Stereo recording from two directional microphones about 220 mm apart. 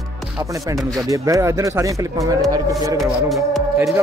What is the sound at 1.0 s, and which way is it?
Speech, 15° right (ahead or behind).